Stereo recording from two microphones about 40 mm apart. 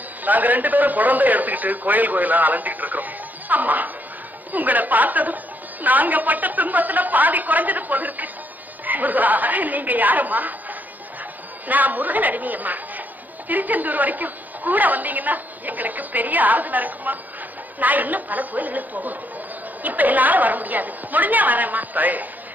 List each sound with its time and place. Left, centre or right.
0.2 s speech: right